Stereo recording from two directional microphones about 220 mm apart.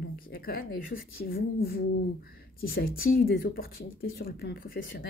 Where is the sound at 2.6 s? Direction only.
45° left (ahead or behind).